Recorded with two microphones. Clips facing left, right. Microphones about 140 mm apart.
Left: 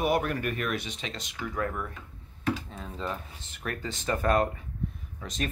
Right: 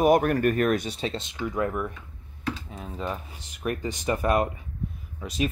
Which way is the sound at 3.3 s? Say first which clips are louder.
Right 6 dB; 15° right (ahead or behind).